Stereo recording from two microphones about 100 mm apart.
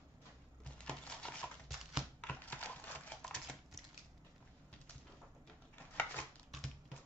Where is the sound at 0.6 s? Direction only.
10° left (ahead or behind).